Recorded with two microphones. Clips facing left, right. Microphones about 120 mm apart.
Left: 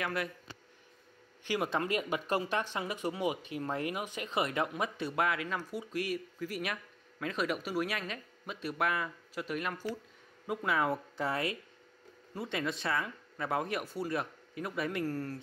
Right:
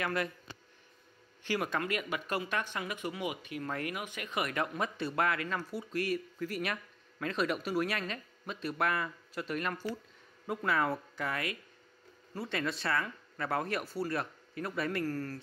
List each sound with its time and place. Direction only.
0.0 s speech: 5° left (ahead or behind)
1.4 s speech: 15° left (ahead or behind)
1.7 s speech: 30° left (ahead or behind)
11.1 s speech: 30° left (ahead or behind)
12.4 s speech: 15° left (ahead or behind)